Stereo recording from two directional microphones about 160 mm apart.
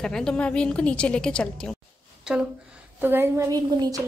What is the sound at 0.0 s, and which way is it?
A woman's voice, 5° left (ahead or behind).